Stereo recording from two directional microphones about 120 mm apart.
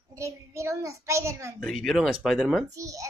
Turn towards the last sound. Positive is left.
turn(degrees=-30)  # may be behind; listen again after turning